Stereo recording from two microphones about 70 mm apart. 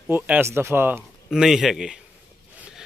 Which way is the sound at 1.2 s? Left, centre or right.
Centre.